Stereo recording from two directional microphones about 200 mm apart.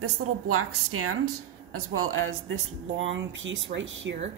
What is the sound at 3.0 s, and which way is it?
Speech, 70° right (ahead or behind).